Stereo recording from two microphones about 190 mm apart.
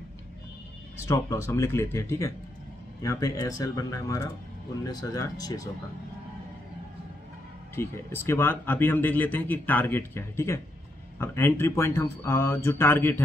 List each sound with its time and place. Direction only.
0.9 s speech: 15° left (ahead or behind)
7.7 s speech: 10° left (ahead or behind)